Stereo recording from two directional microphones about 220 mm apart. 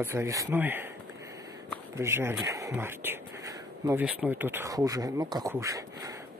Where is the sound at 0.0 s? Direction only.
10° right (ahead or behind).